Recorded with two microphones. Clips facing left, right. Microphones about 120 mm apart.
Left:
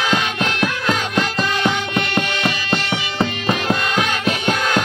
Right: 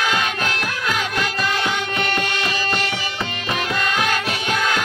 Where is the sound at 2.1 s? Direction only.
35° left (ahead or behind).